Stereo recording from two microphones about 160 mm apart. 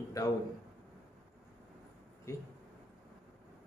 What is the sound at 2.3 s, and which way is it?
Speech, 20° left (ahead or behind).